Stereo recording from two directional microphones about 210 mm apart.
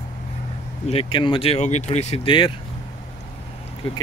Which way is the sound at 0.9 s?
25° left (ahead or behind).